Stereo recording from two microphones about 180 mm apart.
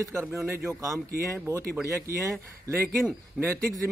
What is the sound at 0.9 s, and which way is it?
Speech, 15° right (ahead or behind).